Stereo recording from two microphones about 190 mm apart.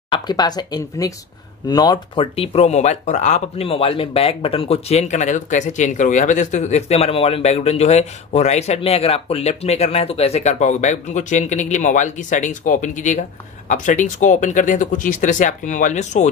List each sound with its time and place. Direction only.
0.1 s speech: 20° left (ahead or behind); by 16.3 s 40° left (ahead or behind)